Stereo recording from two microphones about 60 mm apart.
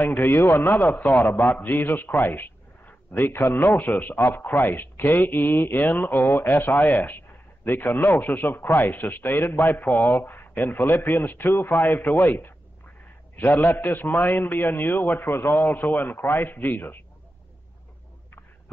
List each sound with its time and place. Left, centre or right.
0.0 s a man's voice: left